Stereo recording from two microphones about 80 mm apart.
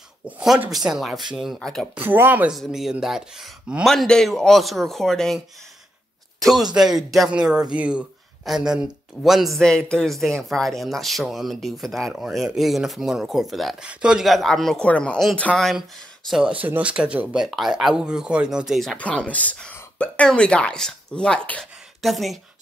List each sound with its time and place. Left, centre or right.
0.7 s speech: centre
2.0 s speech: right
2.5 s speech: centre
6.4 s speech: centre
9.6 s speech: centre
13.7 s speech: centre
14.2 s speech: centre
14.9 s speech: centre
15.5 s speech: centre
16.3 s speech: centre
16.5 s speech: right
18.9 s speech: centre
22.0 s speech: centre